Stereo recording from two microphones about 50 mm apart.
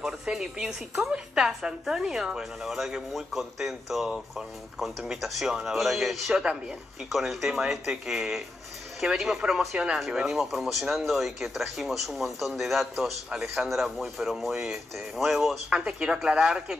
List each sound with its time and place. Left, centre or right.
0.0 s a woman's voice: centre
15.7 s a woman's voice: centre